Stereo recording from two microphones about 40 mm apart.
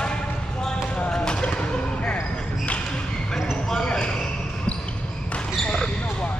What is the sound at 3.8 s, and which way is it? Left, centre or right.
Basketball bounce, left.